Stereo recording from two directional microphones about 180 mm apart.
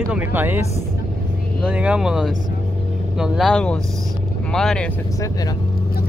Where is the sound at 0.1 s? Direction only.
10° right (ahead or behind).